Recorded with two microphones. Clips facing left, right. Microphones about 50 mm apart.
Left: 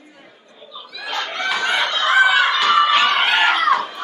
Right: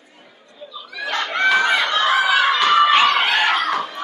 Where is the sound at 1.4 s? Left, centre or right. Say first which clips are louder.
Right 4 dB; centre.